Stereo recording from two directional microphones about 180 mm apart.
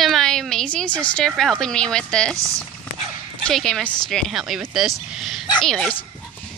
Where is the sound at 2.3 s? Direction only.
15° right (ahead or behind).